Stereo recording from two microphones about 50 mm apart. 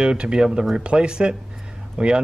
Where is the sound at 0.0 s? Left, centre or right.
Centre.